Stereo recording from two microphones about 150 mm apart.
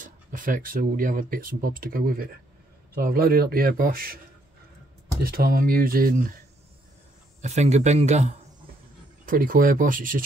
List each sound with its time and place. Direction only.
0.0 s speech: 65° right (ahead or behind)
2.9 s a man's voice: 90° right
5.2 s speech: 80° right
7.4 s speech: 50° right (ahead or behind)
9.2 s speech: 65° right (ahead or behind)